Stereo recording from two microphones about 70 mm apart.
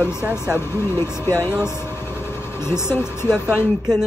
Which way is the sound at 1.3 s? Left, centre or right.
Right.